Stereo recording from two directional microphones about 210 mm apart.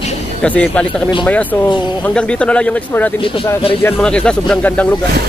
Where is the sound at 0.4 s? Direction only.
5° left (ahead or behind).